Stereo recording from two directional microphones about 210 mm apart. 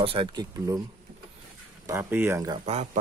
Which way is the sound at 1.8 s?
10° right (ahead or behind).